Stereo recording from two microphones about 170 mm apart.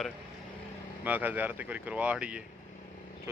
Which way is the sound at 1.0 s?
10° right (ahead or behind).